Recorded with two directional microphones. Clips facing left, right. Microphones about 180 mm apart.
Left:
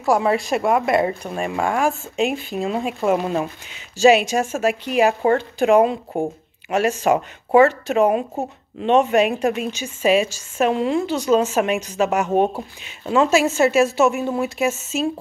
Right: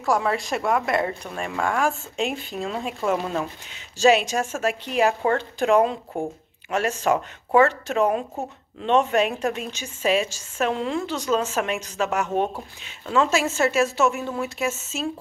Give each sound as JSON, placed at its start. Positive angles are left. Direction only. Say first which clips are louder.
{"t": 0.0, "sound": "a woman's voice", "louder": "left 5 dB", "side_deg": 10}